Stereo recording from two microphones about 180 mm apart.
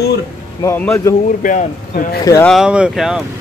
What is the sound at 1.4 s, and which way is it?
Speech, 50° left (ahead or behind).